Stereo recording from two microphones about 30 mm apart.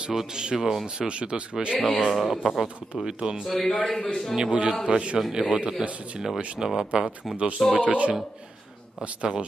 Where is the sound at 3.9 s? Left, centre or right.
Left.